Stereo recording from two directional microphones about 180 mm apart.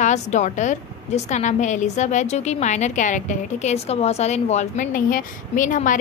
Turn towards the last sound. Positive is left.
turn(degrees=45)  # may be behind; listen again after turning